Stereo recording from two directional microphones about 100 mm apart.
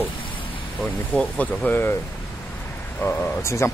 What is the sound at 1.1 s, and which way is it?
Speech, 10° left (ahead or behind).